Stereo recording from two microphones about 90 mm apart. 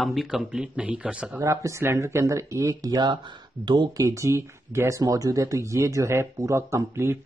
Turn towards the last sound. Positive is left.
turn(degrees=-30)  # may be behind; listen again after turning